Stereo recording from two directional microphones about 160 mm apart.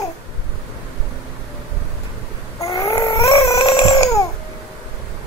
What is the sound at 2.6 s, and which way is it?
Crying, 20° left (ahead or behind).